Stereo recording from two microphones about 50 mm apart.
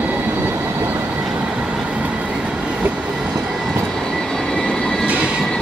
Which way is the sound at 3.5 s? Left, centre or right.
Centre.